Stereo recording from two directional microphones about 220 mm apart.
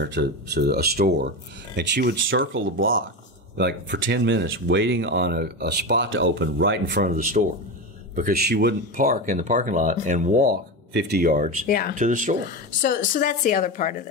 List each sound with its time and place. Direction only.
0.0 s speech: 50° right (ahead or behind)
2.2 s speech: 60° right (ahead or behind)
3.5 s speech: 50° right (ahead or behind); by 10.5 s 35° right (ahead or behind)
10.9 s speech: 50° right (ahead or behind)
11.6 s speech: 40° left (ahead or behind)
11.9 s speech: 35° right (ahead or behind)
12.8 s speech: 40° left (ahead or behind)